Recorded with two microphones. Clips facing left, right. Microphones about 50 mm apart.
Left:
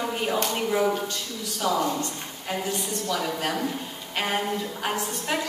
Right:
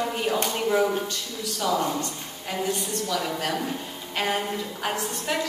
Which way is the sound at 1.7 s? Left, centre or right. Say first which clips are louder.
Even; centre.